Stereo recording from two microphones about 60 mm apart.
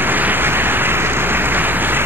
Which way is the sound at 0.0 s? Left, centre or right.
Right.